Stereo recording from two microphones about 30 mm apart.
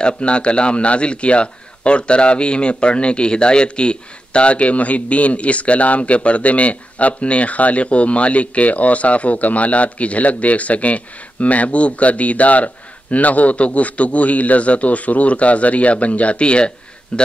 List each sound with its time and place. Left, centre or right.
0.0 s a man's voice: left